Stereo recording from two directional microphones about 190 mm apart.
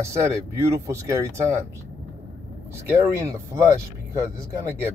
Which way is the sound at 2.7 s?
15° right (ahead or behind).